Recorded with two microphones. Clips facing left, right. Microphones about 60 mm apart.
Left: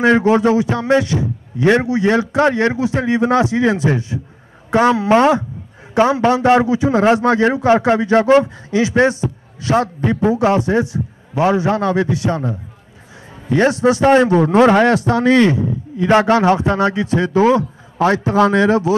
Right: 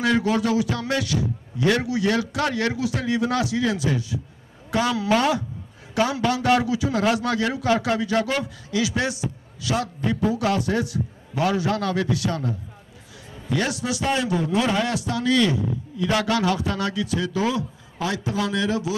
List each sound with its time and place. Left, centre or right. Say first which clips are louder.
0.0 s a man's voice: left 9 dB; left